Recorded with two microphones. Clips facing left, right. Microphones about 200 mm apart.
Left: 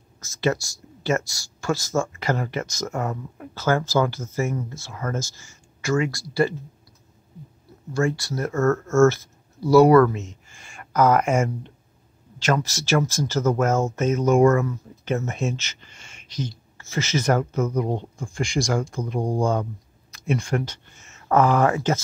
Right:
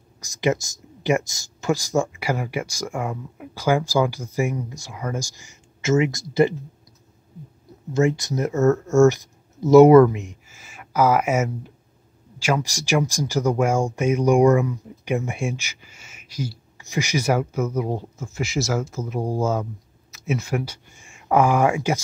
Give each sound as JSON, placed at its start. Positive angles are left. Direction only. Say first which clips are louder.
{"t": 0.2, "sound": "speech", "louder": "right 1 dB", "side_deg": -15}
{"t": 7.9, "sound": "speech", "louder": "right 3 dB", "side_deg": -20}
{"t": 10.5, "sound": "speech", "louder": "left 1 dB", "side_deg": -5}